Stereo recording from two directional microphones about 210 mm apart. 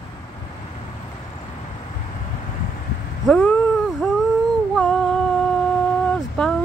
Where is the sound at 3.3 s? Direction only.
5° left (ahead or behind).